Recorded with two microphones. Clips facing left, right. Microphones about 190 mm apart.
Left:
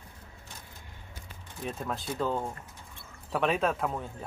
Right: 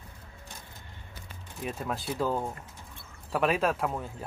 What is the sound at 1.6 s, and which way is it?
Speech, 5° right (ahead or behind).